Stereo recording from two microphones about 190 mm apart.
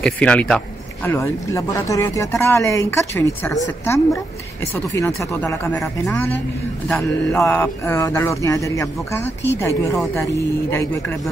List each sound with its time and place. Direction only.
0.0 s speech: 5° left (ahead or behind)